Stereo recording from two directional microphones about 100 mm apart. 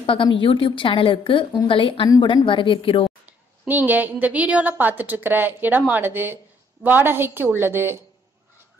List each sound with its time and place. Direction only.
0.0 s a woman's voice: 60° left (ahead or behind)
3.3 s a woman's voice: 15° right (ahead or behind)